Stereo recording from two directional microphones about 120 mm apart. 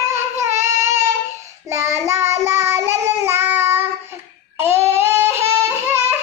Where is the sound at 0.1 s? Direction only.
20° right (ahead or behind).